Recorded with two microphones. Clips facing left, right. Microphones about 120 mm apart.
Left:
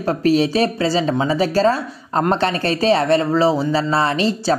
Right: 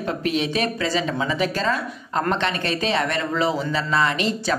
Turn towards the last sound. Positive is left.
turn(degrees=35)  # may be behind; listen again after turning